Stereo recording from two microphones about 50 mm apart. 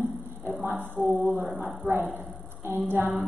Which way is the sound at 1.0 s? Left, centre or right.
Centre.